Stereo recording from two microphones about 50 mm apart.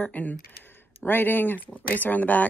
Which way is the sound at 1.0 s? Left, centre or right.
Left.